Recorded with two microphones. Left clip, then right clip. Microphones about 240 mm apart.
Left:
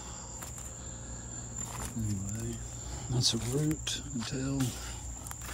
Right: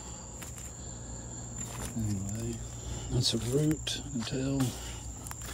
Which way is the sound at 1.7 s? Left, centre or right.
Centre.